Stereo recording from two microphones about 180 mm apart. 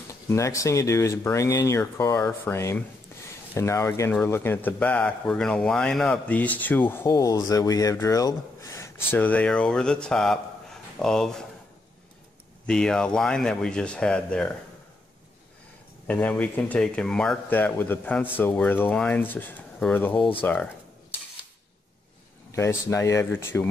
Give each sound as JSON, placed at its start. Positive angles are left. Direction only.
{"t": 0.3, "sound": "speech", "side_deg": 15}
{"t": 12.6, "sound": "speech", "side_deg": 5}
{"t": 16.1, "sound": "speech", "side_deg": 10}
{"t": 22.5, "sound": "speech", "side_deg": 15}